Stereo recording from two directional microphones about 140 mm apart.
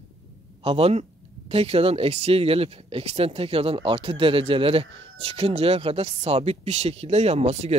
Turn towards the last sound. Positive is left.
turn(degrees=-50)  # may be behind; listen again after turning